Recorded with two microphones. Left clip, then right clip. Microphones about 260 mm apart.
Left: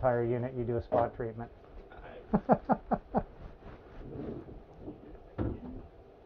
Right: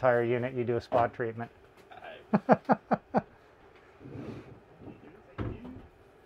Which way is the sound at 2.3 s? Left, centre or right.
Right.